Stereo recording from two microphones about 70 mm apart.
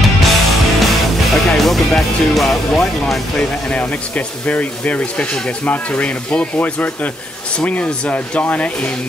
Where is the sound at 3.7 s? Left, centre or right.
Centre.